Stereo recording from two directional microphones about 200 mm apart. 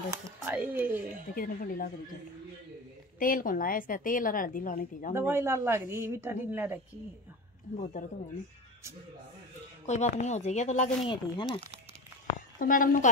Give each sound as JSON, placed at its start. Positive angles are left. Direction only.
{"t": 0.5, "sound": "a woman's voice", "side_deg": -10}
{"t": 1.3, "sound": "a woman's voice", "side_deg": 45}
{"t": 3.2, "sound": "a woman's voice", "side_deg": 45}
{"t": 5.1, "sound": "a woman's voice", "side_deg": -10}
{"t": 8.0, "sound": "a woman's voice", "side_deg": 45}
{"t": 9.8, "sound": "speech", "side_deg": 35}
{"t": 11.1, "sound": "speech", "side_deg": 25}
{"t": 12.5, "sound": "a woman's voice", "side_deg": 45}